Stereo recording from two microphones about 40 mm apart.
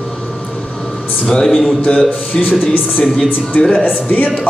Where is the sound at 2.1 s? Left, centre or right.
Left.